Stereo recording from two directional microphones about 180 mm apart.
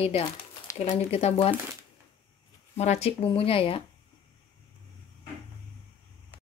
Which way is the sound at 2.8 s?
35° left (ahead or behind).